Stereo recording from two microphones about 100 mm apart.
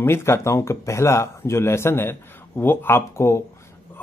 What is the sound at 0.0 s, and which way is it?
Speech, 25° left (ahead or behind).